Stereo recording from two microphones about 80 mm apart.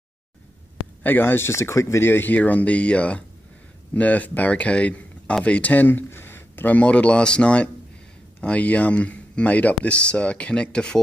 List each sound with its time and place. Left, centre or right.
1.0 s speech: left; by 11.0 s centre